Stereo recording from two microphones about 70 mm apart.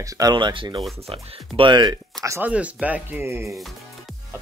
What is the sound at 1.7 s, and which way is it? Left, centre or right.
Speech, right.